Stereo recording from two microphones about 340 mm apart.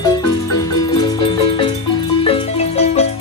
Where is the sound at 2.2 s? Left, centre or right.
Centre.